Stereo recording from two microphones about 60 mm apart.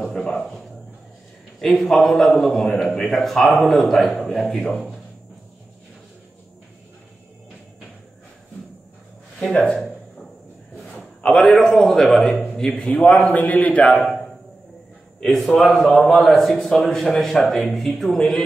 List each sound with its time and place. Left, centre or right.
0.2 s a sound: centre
1.6 s a man's voice: centre
9.4 s speech: centre
10.9 s a man's voice: centre
12.9 s a man's voice: left
15.1 s a man's voice: centre
18.0 s speech: centre